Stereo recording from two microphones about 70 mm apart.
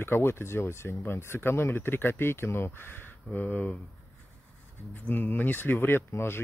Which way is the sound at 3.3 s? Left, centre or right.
Left.